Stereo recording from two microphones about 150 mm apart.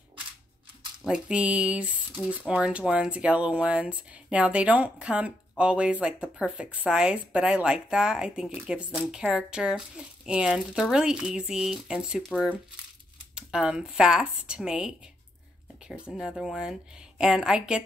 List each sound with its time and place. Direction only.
1.0 s speech: 5° right (ahead or behind)